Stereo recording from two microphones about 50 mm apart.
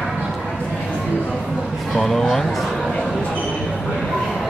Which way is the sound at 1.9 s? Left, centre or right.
Centre.